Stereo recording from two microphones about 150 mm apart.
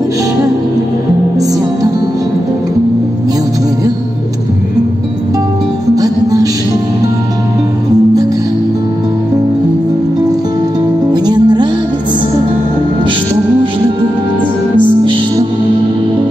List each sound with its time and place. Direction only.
5.9 s music: 25° right (ahead or behind)
11.2 s music: 30° right (ahead or behind)